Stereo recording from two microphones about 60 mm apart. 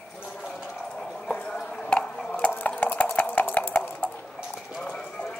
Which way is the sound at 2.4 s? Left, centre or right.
Left.